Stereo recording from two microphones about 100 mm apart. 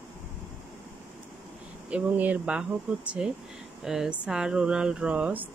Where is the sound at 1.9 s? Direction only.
15° right (ahead or behind).